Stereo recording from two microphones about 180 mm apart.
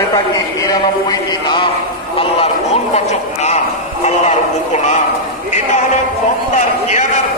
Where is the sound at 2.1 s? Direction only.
35° left (ahead or behind).